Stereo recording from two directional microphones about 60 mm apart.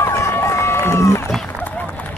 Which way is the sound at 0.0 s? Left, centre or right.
Left.